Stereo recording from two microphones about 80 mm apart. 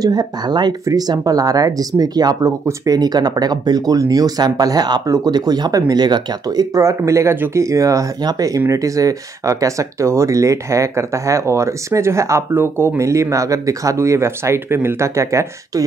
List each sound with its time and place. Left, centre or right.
0.0 s speech: right
5.0 s speech: right
5.3 s speech: right
6.8 s speech: right